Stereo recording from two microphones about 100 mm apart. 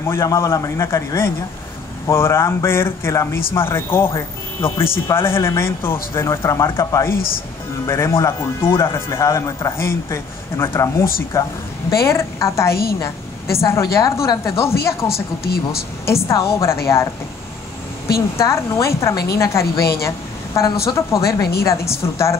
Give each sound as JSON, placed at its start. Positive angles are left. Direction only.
{"t": 0.0, "sound": "a woman's voice", "side_deg": 30}
{"t": 16.3, "sound": "a woman's voice", "side_deg": 30}
{"t": 18.4, "sound": "a woman's voice", "side_deg": 30}